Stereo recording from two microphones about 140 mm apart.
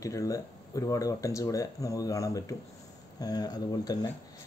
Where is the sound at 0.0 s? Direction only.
25° left (ahead or behind).